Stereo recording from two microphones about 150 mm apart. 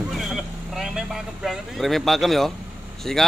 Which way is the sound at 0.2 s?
Centre (ahead or behind).